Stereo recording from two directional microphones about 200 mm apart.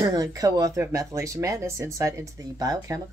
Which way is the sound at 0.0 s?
20° right (ahead or behind).